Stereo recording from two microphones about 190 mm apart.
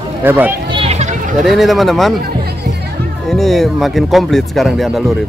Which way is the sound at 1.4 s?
Centre (ahead or behind).